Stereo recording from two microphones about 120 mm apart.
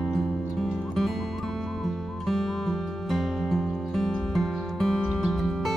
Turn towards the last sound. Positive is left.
turn(degrees=0)  # may be behind; listen again after turning